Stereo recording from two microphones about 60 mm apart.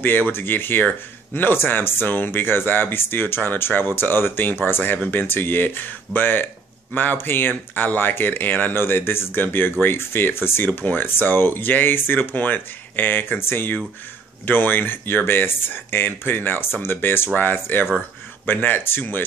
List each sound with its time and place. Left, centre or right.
0.0 s speech: left